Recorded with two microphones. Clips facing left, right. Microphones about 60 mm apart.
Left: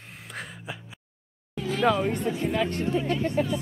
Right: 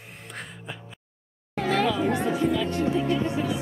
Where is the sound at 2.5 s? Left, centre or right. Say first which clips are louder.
Even; left.